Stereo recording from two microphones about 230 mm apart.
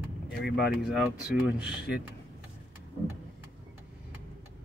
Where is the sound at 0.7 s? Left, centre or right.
Centre.